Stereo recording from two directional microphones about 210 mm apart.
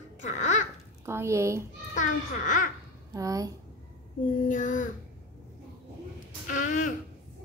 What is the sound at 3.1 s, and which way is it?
Speech, 15° right (ahead or behind).